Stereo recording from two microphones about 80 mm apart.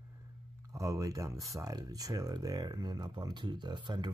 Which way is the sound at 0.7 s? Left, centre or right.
Right.